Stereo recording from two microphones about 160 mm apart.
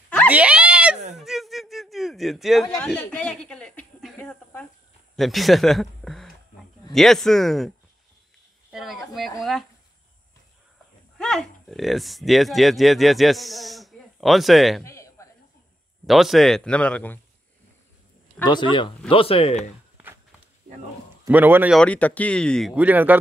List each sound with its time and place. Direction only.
0.3 s a sound: 5° right (ahead or behind); by 4.6 s 10° left (ahead or behind)
5.1 s speech: centre (ahead or behind)
8.7 s a sound: centre (ahead or behind)
11.1 s speech: centre (ahead or behind)
14.8 s a sound: 15° left (ahead or behind)
16.1 s speech: centre (ahead or behind)
18.4 s speech: 30° left (ahead or behind)
21.3 s speech: 10° right (ahead or behind)
21.7 s speech: 10° left (ahead or behind)
22.8 s speech: 10° right (ahead or behind)